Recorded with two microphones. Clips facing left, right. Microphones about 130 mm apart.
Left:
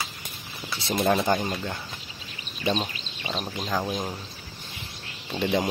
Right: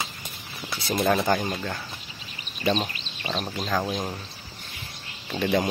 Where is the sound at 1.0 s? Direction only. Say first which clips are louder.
Even; 5° left (ahead or behind).